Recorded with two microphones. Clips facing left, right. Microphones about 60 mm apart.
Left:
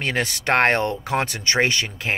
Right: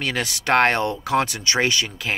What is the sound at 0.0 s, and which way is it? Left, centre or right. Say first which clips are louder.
Speech: left 1 dB; left.